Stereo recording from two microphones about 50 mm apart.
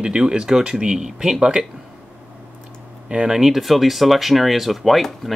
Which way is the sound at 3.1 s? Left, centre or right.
Centre.